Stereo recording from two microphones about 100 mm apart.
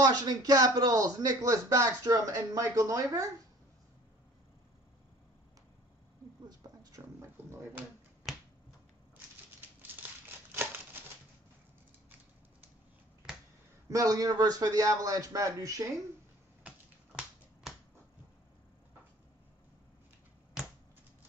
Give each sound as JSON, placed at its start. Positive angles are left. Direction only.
{"t": 0.0, "sound": "speech", "side_deg": -40}
{"t": 6.8, "sound": "a sound", "side_deg": -30}
{"t": 10.5, "sound": "scissors", "side_deg": -25}
{"t": 13.8, "sound": "speech", "side_deg": -35}
{"t": 16.6, "sound": "finger snapping", "side_deg": -10}